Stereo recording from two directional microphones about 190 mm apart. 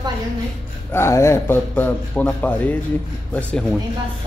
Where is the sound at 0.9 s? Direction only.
15° left (ahead or behind).